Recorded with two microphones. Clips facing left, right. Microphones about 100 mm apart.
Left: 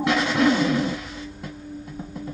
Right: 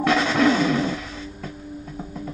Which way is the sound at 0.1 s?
35° right (ahead or behind).